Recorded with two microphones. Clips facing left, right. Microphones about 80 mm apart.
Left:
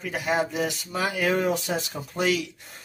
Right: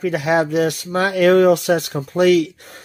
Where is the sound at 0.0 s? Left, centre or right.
Right.